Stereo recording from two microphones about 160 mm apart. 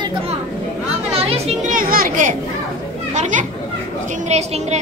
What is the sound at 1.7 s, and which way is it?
A woman's voice, 60° right (ahead or behind).